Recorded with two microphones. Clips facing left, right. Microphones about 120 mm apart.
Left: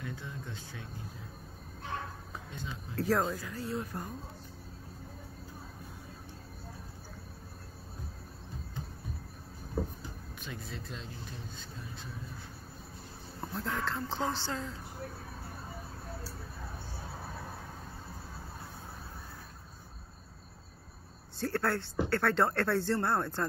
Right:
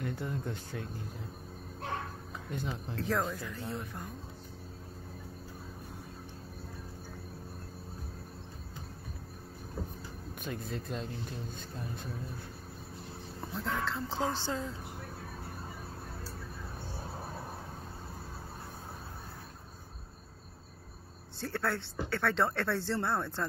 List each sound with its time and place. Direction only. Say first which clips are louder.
0.0 s speech: right 6 dB; 55° right (ahead or behind)
2.5 s speech: right 7 dB; 60° right (ahead or behind)
3.0 s speech: left 4 dB; 5° left (ahead or behind)
10.4 s speech: right 5 dB; 50° right (ahead or behind)
13.4 s speech: even; centre (ahead or behind)
14.4 s a woman's voice: right 2 dB; 20° right (ahead or behind)
21.4 s speech: left 3 dB; centre (ahead or behind)